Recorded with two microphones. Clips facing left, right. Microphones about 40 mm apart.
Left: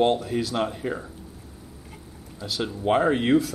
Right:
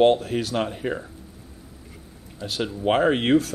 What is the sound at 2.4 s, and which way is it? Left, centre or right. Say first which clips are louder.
Speech: right 2 dB; right.